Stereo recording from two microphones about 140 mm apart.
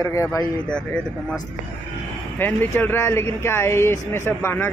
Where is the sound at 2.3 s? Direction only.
15° left (ahead or behind).